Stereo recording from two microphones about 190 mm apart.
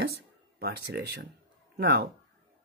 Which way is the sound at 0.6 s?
60° right (ahead or behind).